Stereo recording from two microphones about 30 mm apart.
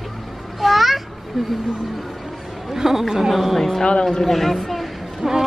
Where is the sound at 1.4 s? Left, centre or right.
Centre.